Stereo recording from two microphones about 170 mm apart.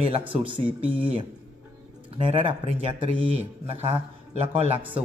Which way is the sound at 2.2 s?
35° right (ahead or behind).